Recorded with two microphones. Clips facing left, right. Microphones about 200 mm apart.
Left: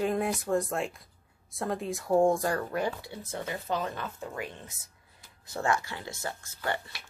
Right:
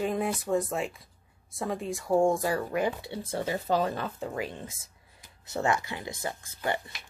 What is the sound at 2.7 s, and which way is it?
Speech, 15° right (ahead or behind).